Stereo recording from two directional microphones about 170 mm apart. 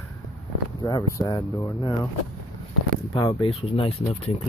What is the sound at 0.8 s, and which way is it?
Speech, 20° left (ahead or behind).